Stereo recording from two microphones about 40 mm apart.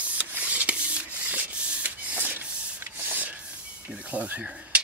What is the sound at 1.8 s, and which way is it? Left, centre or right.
Rub, right.